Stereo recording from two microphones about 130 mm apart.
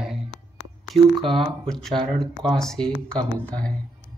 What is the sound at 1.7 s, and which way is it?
Speech, 5° left (ahead or behind).